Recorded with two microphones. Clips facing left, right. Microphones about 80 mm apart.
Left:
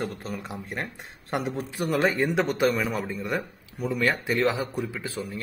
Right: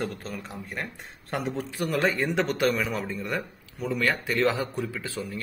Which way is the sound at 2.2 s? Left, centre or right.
Centre.